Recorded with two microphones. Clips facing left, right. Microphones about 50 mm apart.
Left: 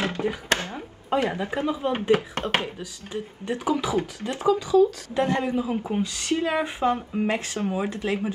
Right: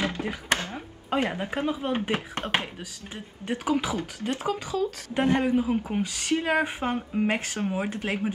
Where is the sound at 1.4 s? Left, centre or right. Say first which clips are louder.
Left 2 dB; right.